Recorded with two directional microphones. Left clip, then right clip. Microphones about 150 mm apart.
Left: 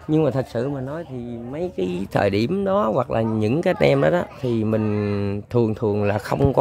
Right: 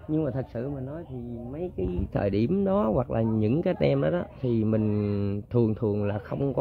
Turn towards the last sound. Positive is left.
turn(degrees=30)  # may be behind; listen again after turning